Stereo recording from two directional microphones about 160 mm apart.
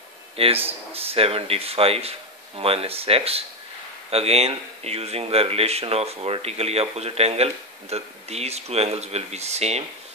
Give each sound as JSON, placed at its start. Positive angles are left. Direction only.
{"t": 0.7, "sound": "speech", "side_deg": -35}